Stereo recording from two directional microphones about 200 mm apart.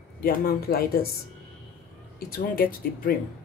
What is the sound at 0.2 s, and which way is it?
Speech, 50° left (ahead or behind).